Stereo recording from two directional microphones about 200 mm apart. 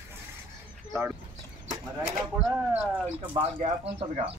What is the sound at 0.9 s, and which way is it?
Speech, 15° right (ahead or behind).